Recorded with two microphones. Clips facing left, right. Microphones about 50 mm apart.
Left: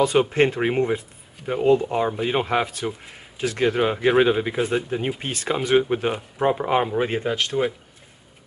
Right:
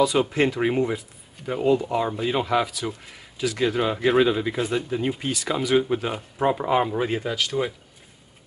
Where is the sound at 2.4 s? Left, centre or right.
Left.